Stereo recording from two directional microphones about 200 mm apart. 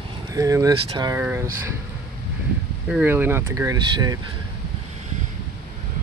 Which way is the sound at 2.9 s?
10° right (ahead or behind).